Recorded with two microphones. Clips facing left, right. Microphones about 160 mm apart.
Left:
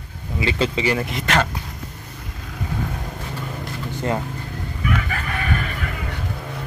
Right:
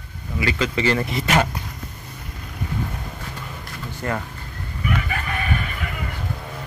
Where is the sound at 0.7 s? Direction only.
10° left (ahead or behind).